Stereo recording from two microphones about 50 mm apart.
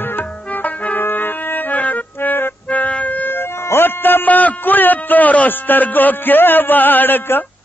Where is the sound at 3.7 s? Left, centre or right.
Left.